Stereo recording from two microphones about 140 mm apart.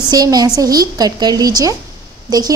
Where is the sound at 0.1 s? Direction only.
30° right (ahead or behind).